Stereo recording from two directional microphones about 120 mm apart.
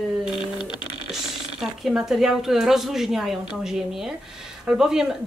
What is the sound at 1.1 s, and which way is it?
A woman's voice, centre (ahead or behind).